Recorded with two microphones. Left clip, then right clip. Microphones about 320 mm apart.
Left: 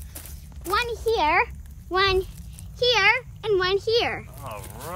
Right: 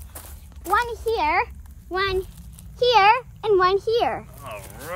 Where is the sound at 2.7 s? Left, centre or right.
Centre.